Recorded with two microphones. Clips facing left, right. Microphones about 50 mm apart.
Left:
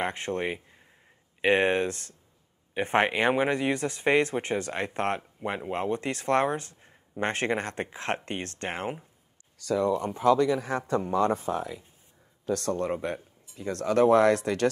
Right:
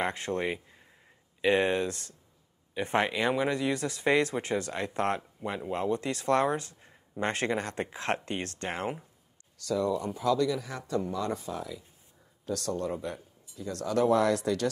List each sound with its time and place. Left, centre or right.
0.0 s speech: left
9.8 s speech: left